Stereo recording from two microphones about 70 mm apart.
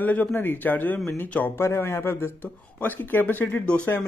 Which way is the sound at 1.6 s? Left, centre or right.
Left.